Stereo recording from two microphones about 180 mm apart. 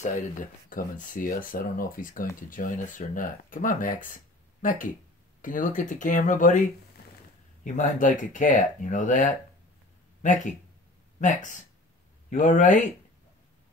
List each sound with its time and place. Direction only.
0.0 s speech: 45° left (ahead or behind)
7.6 s speech: 45° left (ahead or behind)